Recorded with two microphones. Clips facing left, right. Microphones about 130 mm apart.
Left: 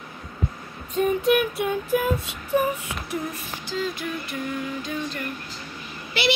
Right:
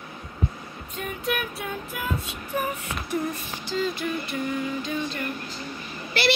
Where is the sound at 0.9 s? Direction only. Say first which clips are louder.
Left 10 dB; 25° left (ahead or behind).